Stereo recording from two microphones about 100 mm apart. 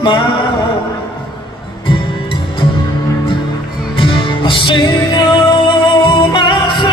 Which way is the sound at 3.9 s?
55° left (ahead or behind).